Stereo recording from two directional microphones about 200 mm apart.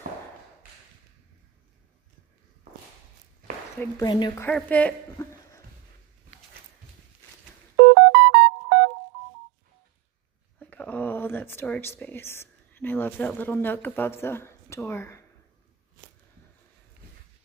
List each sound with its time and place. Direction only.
3.8 s speech: 20° left (ahead or behind)
4.4 s a woman's voice: 5° left (ahead or behind)
7.9 s music: 55° right (ahead or behind)
10.6 s a sound: 5° left (ahead or behind)
13.4 s speech: 10° left (ahead or behind)